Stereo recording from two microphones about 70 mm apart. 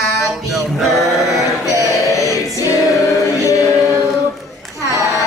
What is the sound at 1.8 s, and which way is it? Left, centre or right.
Music, left.